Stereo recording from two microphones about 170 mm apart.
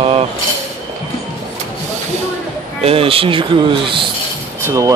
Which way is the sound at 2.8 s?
35° right (ahead or behind).